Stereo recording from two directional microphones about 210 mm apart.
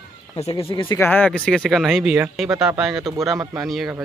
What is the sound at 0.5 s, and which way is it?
Speech, 20° left (ahead or behind).